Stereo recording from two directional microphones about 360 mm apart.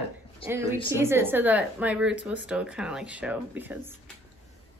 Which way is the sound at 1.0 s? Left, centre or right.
Centre.